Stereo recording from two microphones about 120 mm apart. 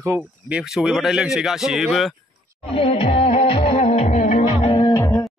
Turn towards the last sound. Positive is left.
turn(degrees=25)  # may be behind; listen again after turning